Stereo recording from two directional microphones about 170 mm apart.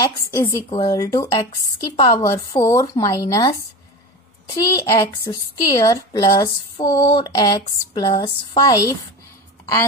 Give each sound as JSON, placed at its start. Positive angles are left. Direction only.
{"t": 0.3, "sound": "a woman's voice", "side_deg": 15}
{"t": 0.7, "sound": "a woman's voice", "side_deg": 25}
{"t": 4.6, "sound": "a woman's voice", "side_deg": 25}